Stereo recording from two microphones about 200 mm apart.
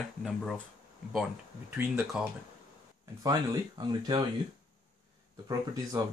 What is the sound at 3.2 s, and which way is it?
Speech, 20° right (ahead or behind).